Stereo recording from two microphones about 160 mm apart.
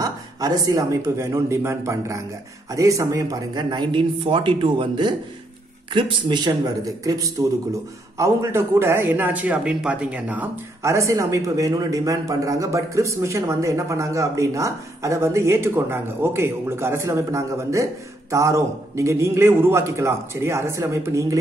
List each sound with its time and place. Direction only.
0.0 s speech: 20° right (ahead or behind)